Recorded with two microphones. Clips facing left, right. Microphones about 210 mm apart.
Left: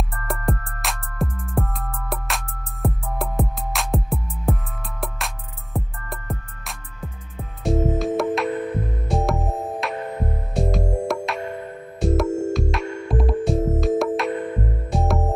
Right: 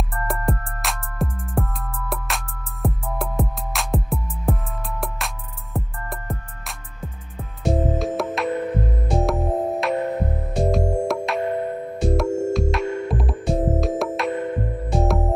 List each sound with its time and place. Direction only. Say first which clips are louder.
0.3 s music: left 1 dB; centre (ahead or behind)
7.6 s music: left 1 dB; centre (ahead or behind)